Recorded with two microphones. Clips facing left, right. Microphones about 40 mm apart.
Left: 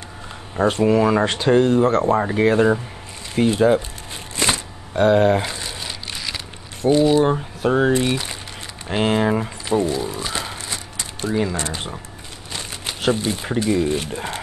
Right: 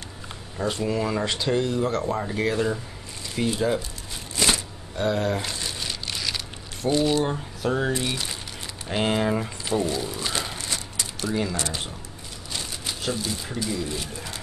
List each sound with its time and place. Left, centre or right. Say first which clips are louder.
0.6 s speech: left 9 dB; left
4.4 s shuffling cards: left 2 dB; left
4.9 s speech: left 9 dB; left
5.4 s speech: left 4 dB; centre
5.8 s rain on surface: left 1 dB; centre
6.9 s speech: left 7 dB; centre
8.8 s speech: left 5 dB; centre
10.6 s a sound: left 1 dB; left
12.8 s speech: left 9 dB; left